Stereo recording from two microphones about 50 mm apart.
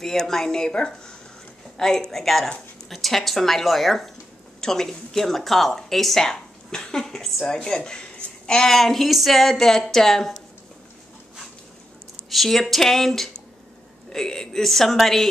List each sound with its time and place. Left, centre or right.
0.0 s speech: centre
8.7 s speech: centre
12.3 s speech: centre